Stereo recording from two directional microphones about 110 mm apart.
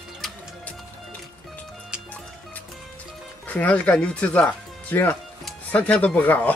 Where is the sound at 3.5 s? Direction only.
15° left (ahead or behind).